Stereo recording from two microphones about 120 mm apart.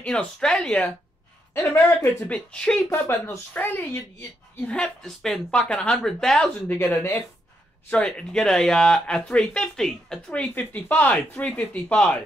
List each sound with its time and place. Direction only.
0.0 s speech: 5° left (ahead or behind)
1.5 s speech: 20° left (ahead or behind)
2.9 s speech: 20° left (ahead or behind); by 6.5 s 5° left (ahead or behind)
6.7 s speech: 20° left (ahead or behind)
7.9 s speech: 10° left (ahead or behind)